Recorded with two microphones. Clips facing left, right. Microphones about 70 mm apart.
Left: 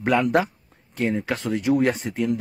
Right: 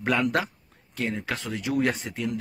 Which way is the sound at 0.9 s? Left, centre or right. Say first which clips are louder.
Left 5 dB; left.